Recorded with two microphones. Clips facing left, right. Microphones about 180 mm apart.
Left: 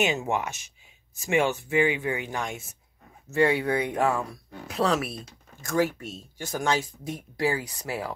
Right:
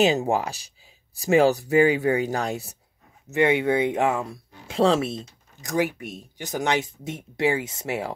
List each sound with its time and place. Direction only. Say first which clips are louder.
0.0 s speech: right 5 dB; 35° right (ahead or behind)
3.3 s speech: right 3 dB; 20° right (ahead or behind)